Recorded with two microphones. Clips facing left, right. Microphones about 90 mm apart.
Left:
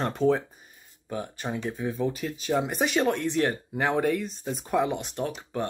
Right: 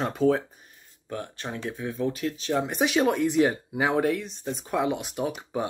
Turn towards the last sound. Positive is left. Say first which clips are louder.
# right 1 dB
turn(degrees=-10)  # may be behind; listen again after turning